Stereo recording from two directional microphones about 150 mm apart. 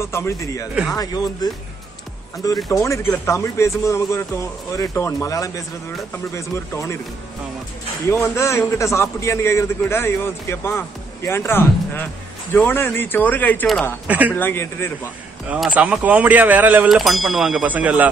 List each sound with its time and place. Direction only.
0.0 s a man's voice: 20° left (ahead or behind)
8.1 s a man's voice: 20° left (ahead or behind)
14.0 s speech: 10° right (ahead or behind)
14.3 s a man's voice: 15° left (ahead or behind)
15.4 s speech: 10° right (ahead or behind)
16.9 s speech: centre (ahead or behind)